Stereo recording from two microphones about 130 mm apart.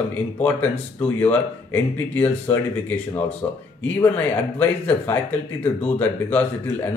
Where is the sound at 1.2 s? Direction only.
15° left (ahead or behind).